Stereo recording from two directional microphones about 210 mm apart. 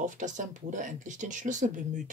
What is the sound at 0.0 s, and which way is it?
Speech, 35° right (ahead or behind).